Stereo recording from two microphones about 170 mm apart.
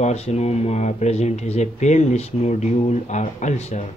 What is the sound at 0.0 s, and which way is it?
Speech, 40° left (ahead or behind).